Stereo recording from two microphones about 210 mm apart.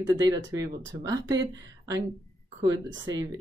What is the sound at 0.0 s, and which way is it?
Speech, 15° right (ahead or behind).